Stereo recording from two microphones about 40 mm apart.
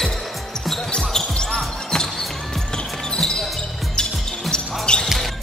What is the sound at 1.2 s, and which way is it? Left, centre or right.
Basketball bounce, left.